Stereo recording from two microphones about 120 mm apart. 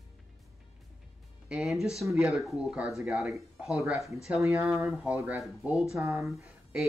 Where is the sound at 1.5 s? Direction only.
Centre (ahead or behind).